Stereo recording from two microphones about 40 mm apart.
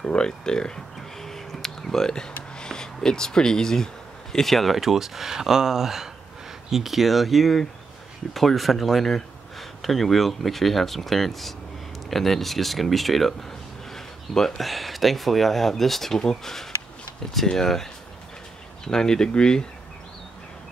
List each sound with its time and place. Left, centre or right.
0.0 s speech: left; by 4.7 s centre
4.7 s speech: centre
13.9 s a sound: centre
14.6 s speech: centre
18.9 s speech: centre